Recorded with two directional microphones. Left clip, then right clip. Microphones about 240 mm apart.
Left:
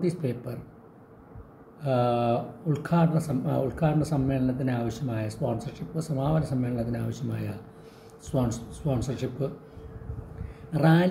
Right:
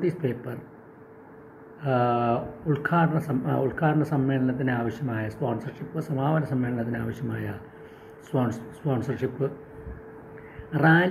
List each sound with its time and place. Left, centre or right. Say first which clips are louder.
0.0 s speech: right 2 dB; centre
1.8 s speech: right 1 dB; centre
10.7 s speech: right 3 dB; centre